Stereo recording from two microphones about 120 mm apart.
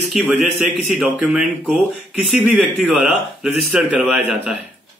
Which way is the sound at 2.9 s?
10° right (ahead or behind).